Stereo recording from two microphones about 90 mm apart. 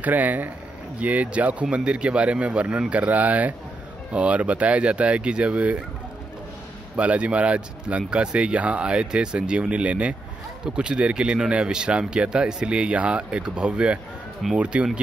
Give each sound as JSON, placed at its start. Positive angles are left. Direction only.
{"t": 0.0, "sound": "speech", "side_deg": -20}
{"t": 7.0, "sound": "speech", "side_deg": -15}